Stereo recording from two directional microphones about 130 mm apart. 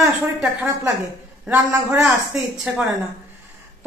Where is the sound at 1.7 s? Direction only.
20° right (ahead or behind).